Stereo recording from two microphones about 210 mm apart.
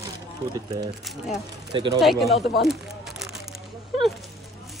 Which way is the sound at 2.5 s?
Centre (ahead or behind).